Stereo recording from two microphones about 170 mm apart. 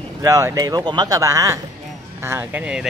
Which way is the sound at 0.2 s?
15° right (ahead or behind).